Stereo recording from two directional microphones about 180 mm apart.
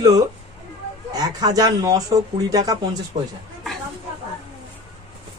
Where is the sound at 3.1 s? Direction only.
35° right (ahead or behind).